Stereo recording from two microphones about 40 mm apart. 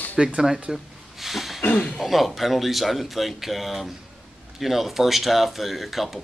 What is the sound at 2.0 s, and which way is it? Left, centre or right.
Speech, centre.